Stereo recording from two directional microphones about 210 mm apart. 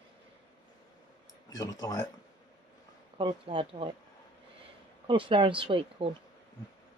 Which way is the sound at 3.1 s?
25° right (ahead or behind).